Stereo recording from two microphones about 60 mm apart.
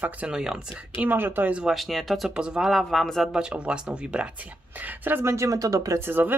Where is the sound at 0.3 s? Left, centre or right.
Centre.